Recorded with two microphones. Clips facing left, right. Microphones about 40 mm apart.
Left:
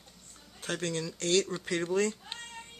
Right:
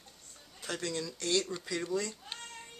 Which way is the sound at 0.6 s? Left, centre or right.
Left.